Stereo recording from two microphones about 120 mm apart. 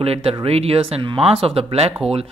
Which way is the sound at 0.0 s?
55° right (ahead or behind).